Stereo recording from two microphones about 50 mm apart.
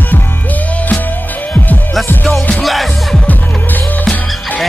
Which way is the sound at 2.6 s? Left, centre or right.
Centre.